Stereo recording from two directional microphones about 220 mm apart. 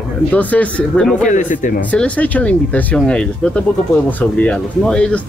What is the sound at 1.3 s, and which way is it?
Speech, 35° left (ahead or behind).